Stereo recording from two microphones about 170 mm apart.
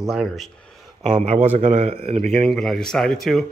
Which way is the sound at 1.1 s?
40° right (ahead or behind).